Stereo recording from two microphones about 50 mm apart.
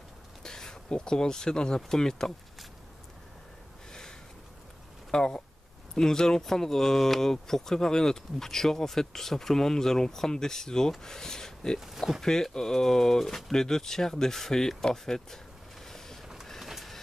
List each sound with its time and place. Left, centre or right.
0.4 s speech: centre
5.1 s speech: centre
11.8 s speech: centre
12.2 s speech: centre
16.4 s train: centre